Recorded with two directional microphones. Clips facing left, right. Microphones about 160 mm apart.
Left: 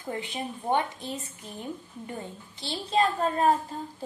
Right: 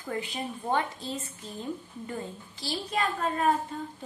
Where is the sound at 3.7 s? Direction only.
35° left (ahead or behind).